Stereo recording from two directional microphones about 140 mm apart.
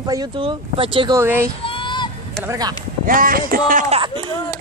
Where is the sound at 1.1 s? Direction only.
20° right (ahead or behind).